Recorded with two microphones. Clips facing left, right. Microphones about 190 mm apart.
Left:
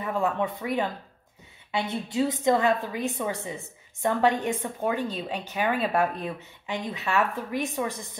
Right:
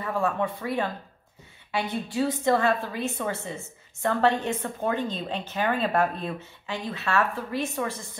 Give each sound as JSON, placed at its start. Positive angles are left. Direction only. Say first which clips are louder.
{"t": 0.0, "sound": "a woman's voice", "louder": "even", "side_deg": 20}